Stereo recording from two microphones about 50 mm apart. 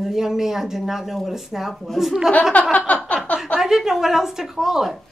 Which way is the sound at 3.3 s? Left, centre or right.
Centre.